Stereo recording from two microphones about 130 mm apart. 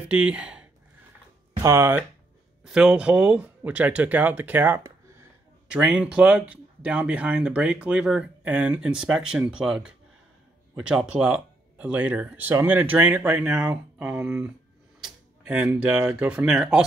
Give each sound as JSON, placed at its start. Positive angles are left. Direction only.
{"t": 0.1, "sound": "speech", "side_deg": -10}
{"t": 1.6, "sound": "speech", "side_deg": -20}
{"t": 2.6, "sound": "speech", "side_deg": -5}
{"t": 15.0, "sound": "tick-tock", "side_deg": -5}
{"t": 15.5, "sound": "speech", "side_deg": -15}